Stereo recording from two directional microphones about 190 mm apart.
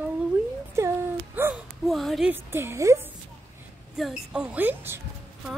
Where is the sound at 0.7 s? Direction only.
15° right (ahead or behind).